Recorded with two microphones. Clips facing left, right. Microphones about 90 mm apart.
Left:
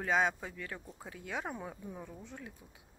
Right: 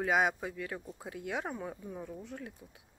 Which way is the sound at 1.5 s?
Centre (ahead or behind).